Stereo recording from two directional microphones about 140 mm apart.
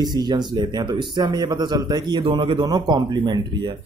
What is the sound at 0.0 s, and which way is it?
Speech, 30° right (ahead or behind).